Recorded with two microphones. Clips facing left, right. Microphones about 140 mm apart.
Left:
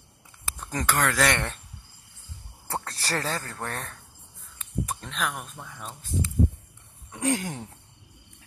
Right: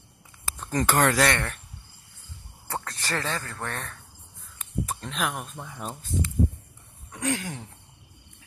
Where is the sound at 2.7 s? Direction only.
35° left (ahead or behind).